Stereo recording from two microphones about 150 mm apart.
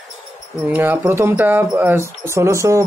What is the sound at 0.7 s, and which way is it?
Speech, 15° right (ahead or behind).